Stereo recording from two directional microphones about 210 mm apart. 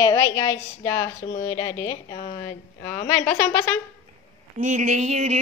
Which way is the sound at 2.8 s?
10° left (ahead or behind).